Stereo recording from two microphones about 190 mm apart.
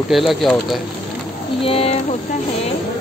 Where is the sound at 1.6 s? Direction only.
30° left (ahead or behind).